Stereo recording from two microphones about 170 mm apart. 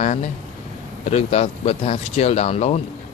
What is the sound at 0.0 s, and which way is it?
Speech, 45° left (ahead or behind).